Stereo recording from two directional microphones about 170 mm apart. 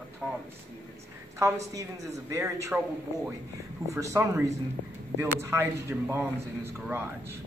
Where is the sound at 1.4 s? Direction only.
20° right (ahead or behind).